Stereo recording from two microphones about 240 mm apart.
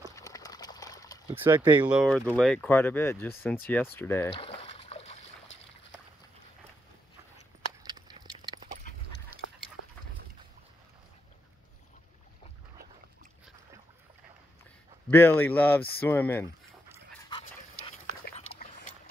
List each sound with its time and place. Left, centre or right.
0.1 s a sound: centre
1.3 s speech: centre
1.8 s speech: centre
4.3 s trickle: left
7.8 s a sound: centre
15.0 s speech: centre
17.3 s dog: left